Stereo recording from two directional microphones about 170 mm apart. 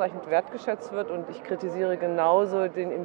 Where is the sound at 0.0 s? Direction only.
20° right (ahead or behind).